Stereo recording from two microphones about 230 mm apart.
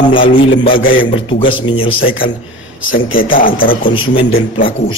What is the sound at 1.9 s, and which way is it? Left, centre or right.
Speech, left.